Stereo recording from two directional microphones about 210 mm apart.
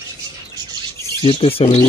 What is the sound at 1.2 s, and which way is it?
Speech, 25° left (ahead or behind).